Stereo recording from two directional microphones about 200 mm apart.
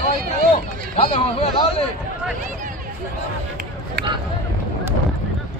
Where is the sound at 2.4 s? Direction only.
40° right (ahead or behind).